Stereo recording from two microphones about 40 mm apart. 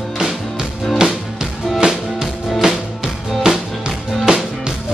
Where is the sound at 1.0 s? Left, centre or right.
Centre.